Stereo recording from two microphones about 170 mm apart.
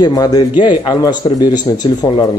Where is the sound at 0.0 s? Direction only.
20° left (ahead or behind).